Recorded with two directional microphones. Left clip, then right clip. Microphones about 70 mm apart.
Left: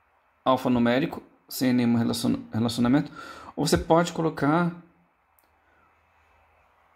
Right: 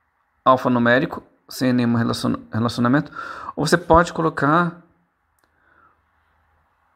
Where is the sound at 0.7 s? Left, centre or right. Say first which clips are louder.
Right 7 dB; right.